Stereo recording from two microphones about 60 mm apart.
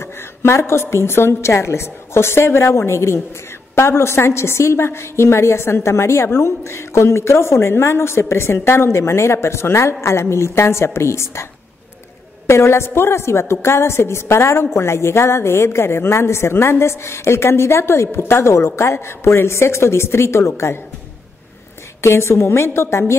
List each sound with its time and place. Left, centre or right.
0.0 s a woman's voice: left
12.4 s a woman's voice: left
22.0 s a woman's voice: left